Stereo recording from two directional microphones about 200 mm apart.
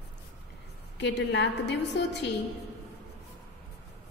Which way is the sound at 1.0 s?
60° left (ahead or behind).